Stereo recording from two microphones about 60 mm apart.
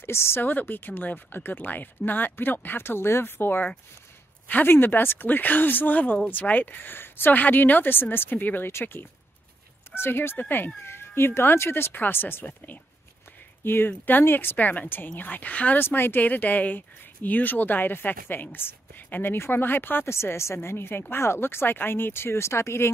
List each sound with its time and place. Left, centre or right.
0.0 s speech: left
13.8 s speech: left
15.8 s speech: left